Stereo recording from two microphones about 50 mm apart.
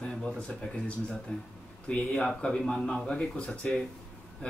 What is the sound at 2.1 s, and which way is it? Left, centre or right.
Speech, centre.